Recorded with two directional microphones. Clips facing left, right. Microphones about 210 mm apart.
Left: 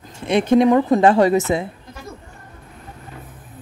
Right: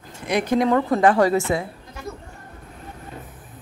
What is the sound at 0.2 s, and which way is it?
A woman's voice, 25° left (ahead or behind).